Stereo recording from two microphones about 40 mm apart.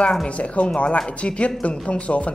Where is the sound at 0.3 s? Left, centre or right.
Left.